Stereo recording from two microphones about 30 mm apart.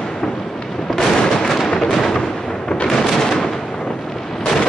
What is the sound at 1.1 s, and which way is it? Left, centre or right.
Fireworks, left.